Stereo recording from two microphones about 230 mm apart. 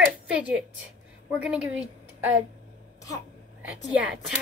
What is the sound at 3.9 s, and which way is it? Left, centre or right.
Speech, centre.